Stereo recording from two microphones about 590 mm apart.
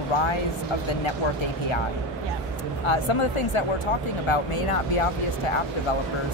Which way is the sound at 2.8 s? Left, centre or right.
Left.